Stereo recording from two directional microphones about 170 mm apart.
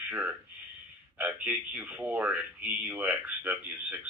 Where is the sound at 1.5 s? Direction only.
10° right (ahead or behind).